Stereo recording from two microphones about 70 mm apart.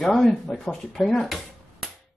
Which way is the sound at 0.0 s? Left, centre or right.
Centre.